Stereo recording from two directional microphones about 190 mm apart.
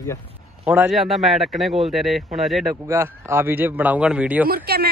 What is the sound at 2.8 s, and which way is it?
Speech, 15° right (ahead or behind).